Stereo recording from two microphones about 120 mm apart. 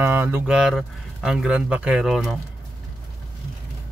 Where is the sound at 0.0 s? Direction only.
20° right (ahead or behind).